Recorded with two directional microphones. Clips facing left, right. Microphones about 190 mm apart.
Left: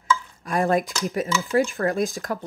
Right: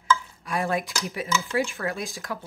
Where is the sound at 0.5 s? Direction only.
45° left (ahead or behind).